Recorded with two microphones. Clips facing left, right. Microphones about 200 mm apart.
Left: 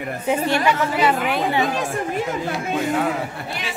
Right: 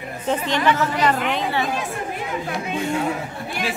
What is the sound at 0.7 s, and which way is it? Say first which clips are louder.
Speech: right 2 dB; 5° left (ahead or behind).